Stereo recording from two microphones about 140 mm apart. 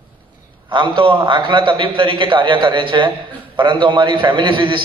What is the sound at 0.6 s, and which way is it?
A man's voice, 35° right (ahead or behind).